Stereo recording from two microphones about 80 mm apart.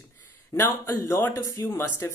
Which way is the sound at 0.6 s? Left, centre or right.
Left.